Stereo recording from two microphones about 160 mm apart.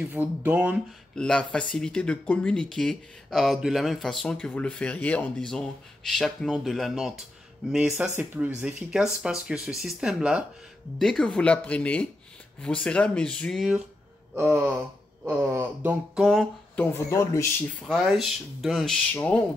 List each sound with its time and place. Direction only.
0.0 s speech: 10° right (ahead or behind)
1.1 s speech: 5° left (ahead or behind); by 16.3 s 10° right (ahead or behind)
16.3 s speech: 5° left (ahead or behind)
16.9 s speech: 20° left (ahead or behind)
17.8 s speech: centre (ahead or behind)